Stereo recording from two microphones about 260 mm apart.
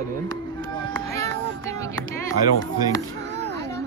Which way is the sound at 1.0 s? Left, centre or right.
Centre.